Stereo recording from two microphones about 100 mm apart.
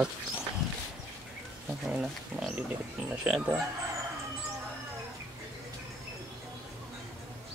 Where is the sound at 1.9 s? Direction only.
5° right (ahead or behind).